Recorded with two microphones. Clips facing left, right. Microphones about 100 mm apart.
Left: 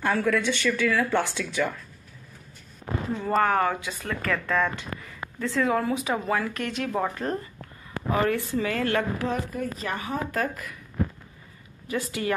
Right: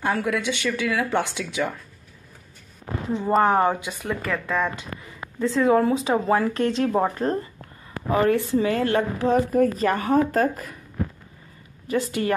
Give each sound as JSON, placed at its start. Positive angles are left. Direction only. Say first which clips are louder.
{"t": 0.0, "sound": "speech", "louder": "even", "side_deg": -15}
{"t": 3.1, "sound": "speech", "louder": "right 4 dB", "side_deg": -20}
{"t": 5.4, "sound": "speech", "louder": "right 6 dB", "side_deg": -20}
{"t": 9.5, "sound": "speech", "louder": "right 11 dB", "side_deg": -50}
{"t": 10.3, "sound": "speech", "louder": "right 6 dB", "side_deg": -35}
{"t": 11.9, "sound": "speech", "louder": "right 4 dB", "side_deg": -30}